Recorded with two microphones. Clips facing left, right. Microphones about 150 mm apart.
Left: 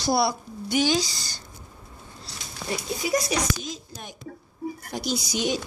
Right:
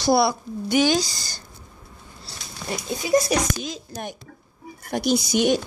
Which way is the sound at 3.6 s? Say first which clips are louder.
Right 5 dB; 70° right (ahead or behind).